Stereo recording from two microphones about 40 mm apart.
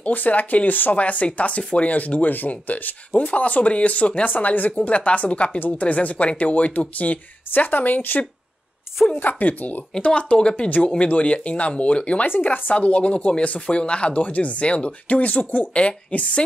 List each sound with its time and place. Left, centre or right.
0.0 s speech: left
10.3 s speech: left